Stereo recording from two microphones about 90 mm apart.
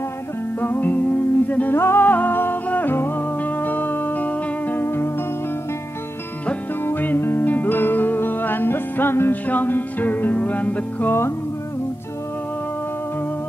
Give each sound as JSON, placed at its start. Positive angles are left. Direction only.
{"t": 0.6, "sound": "music", "side_deg": 20}
{"t": 6.4, "sound": "music", "side_deg": 20}